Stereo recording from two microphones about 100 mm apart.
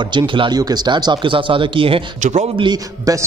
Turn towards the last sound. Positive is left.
turn(degrees=-35)  # may be behind; listen again after turning